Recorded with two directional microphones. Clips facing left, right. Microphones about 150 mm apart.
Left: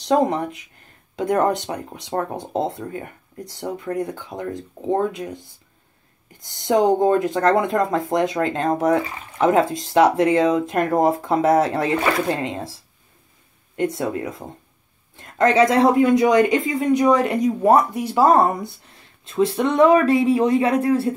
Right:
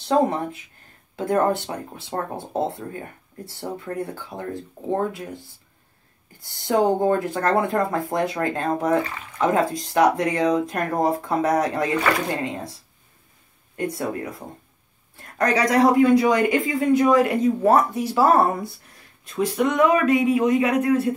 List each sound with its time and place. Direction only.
0.0 s speech: 20° left (ahead or behind)
13.7 s speech: 20° left (ahead or behind)